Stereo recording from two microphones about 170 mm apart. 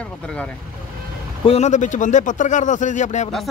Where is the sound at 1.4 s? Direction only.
40° left (ahead or behind).